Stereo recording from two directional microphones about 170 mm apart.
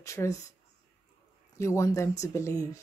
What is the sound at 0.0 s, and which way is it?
Speech, 20° left (ahead or behind).